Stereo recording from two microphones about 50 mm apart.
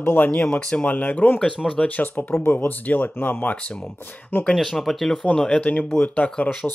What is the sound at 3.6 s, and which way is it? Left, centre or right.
Speech, left.